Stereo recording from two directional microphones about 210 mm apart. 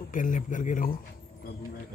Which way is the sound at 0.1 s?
40° left (ahead or behind).